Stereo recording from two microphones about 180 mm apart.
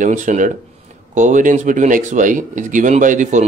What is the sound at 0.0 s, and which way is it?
Speech, 45° right (ahead or behind).